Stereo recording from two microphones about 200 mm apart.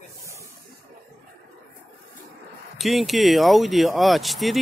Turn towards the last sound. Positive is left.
turn(degrees=0)  # may be behind; listen again after turning